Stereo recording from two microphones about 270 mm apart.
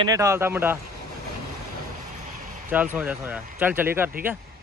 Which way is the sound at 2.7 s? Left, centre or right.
Centre.